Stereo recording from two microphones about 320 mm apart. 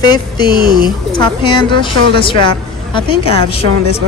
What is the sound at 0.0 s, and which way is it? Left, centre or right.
A woman's voice, centre.